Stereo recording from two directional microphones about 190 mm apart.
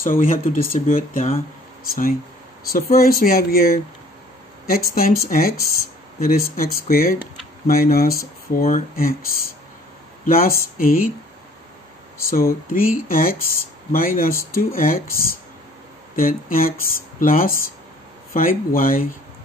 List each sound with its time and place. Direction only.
0.0 s speech: 50° left (ahead or behind)
2.7 s speech: 50° left (ahead or behind)
10.2 s speech: 50° left (ahead or behind)
12.2 s speech: 50° left (ahead or behind)
17.5 s speech: 15° left (ahead or behind)
18.3 s speech: 45° left (ahead or behind)